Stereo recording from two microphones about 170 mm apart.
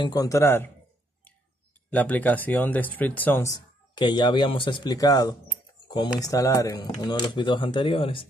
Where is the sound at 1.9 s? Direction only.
10° left (ahead or behind).